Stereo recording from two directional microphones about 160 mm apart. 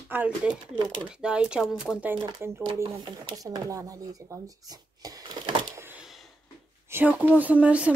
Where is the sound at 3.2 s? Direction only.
25° right (ahead or behind).